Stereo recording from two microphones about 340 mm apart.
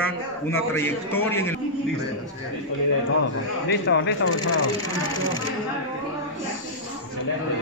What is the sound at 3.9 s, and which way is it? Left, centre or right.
Speech, left.